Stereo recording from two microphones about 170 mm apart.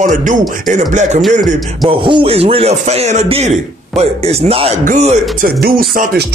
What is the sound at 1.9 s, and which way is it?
A man's voice, 30° right (ahead or behind).